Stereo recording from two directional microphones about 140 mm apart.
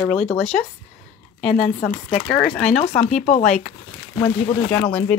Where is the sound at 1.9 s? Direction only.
50° left (ahead or behind).